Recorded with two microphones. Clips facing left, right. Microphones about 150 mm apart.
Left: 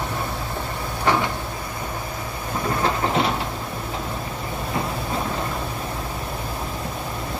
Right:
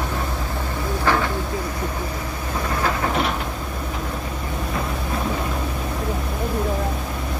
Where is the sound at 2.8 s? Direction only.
30° left (ahead or behind).